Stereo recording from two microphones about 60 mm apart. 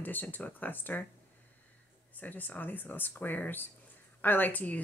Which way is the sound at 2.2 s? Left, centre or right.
Left.